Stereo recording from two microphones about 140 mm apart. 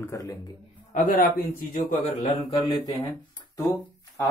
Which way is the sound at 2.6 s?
25° left (ahead or behind).